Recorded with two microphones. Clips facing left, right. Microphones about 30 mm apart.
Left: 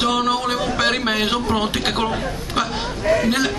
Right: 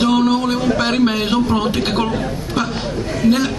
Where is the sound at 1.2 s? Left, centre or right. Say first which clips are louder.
Right 3 dB; left.